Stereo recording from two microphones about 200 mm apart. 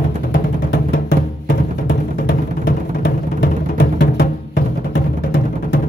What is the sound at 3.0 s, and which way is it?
Music, 50° left (ahead or behind).